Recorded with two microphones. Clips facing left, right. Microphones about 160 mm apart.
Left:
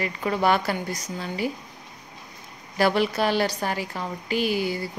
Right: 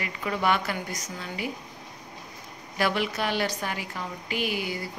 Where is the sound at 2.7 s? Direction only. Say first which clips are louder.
Left 5 dB; 35° left (ahead or behind).